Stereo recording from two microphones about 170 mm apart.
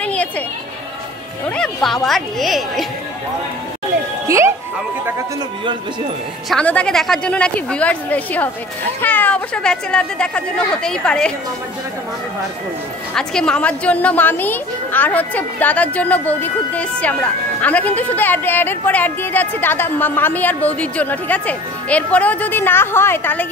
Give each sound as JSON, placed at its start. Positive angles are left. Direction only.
{"t": 0.0, "sound": "chatter", "side_deg": 10}
{"t": 1.6, "sound": "speech", "side_deg": 0}
{"t": 4.3, "sound": "speech", "side_deg": -15}
{"t": 6.5, "sound": "a woman's voice", "side_deg": 5}
{"t": 13.1, "sound": "a woman's voice", "side_deg": 5}